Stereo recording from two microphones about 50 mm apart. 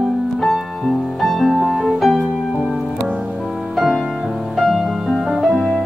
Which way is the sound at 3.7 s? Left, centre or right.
Centre.